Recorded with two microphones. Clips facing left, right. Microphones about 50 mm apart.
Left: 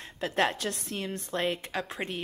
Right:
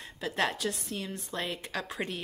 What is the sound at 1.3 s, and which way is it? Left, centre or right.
Speech, left.